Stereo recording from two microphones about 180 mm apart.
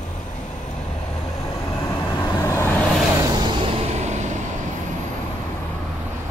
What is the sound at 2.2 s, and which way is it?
Vehicle, 20° left (ahead or behind).